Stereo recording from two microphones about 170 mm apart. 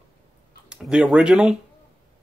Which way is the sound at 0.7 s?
5° right (ahead or behind).